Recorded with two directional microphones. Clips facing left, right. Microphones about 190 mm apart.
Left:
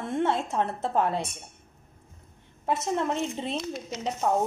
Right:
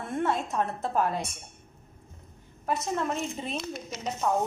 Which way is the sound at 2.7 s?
25° left (ahead or behind).